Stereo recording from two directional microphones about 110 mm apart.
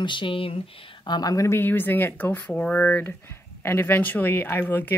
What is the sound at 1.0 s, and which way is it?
Speech, 40° left (ahead or behind).